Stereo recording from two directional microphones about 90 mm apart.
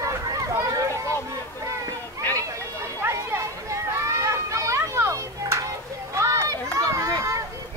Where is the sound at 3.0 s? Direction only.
30° right (ahead or behind).